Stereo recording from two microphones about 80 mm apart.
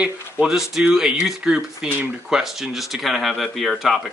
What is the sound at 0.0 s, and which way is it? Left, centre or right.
Speech, centre.